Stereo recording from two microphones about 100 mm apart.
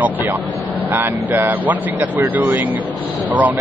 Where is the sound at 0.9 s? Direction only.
20° right (ahead or behind).